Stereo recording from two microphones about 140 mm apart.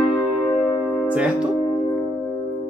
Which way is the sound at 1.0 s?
10° right (ahead or behind).